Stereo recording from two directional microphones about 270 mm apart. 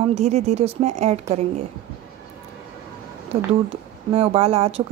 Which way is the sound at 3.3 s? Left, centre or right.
Right.